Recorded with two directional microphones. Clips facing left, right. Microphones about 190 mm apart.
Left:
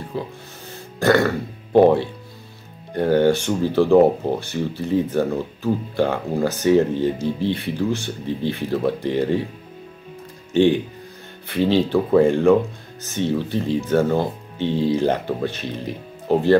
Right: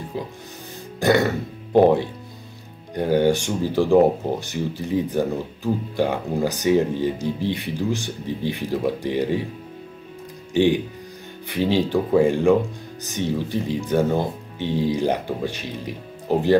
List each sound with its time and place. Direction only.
0.9 s speech: 15° right (ahead or behind)
10.5 s speech: 15° right (ahead or behind)